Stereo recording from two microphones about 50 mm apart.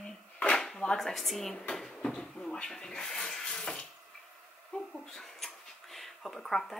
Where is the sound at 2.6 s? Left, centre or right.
Centre.